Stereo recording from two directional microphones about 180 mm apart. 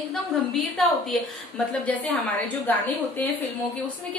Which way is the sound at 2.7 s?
10° left (ahead or behind).